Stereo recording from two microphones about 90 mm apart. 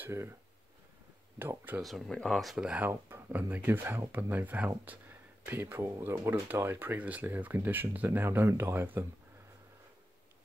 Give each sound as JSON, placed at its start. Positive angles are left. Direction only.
{"t": 0.0, "sound": "speech", "side_deg": -30}
{"t": 1.4, "sound": "speech", "side_deg": -20}
{"t": 1.8, "sound": "speech", "side_deg": 0}
{"t": 2.8, "sound": "speech", "side_deg": -25}